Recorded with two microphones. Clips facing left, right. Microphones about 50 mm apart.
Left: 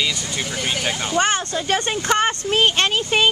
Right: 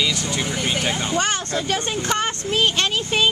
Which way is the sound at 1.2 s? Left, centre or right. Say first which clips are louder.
Left 2 dB; left.